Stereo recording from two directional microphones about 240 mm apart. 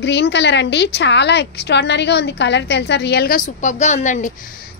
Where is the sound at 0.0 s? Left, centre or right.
Left.